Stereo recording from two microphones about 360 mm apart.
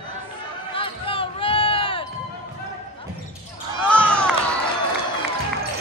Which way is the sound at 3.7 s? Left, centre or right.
Centre.